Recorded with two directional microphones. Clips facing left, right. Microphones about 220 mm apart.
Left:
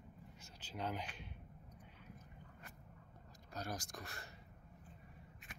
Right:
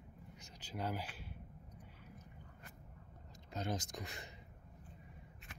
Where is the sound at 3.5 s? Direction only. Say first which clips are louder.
Right 5 dB; 20° right (ahead or behind).